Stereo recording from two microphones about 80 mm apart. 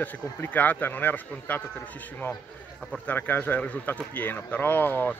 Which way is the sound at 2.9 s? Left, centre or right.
Centre.